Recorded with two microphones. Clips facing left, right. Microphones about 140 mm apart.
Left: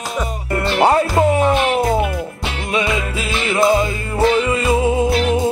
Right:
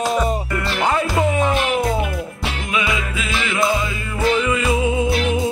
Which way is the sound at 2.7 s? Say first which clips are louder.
Left 4 dB; 30° left (ahead or behind).